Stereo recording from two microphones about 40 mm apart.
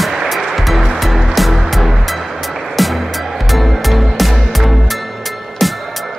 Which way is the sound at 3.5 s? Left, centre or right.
Centre.